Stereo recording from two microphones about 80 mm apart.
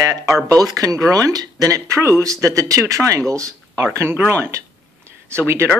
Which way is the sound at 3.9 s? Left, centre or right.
Right.